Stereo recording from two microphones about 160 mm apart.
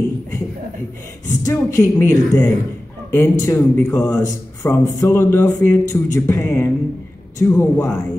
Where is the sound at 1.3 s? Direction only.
20° left (ahead or behind).